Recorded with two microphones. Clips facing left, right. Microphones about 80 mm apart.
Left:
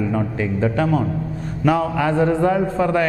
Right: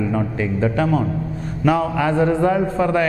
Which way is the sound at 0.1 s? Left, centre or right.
Centre.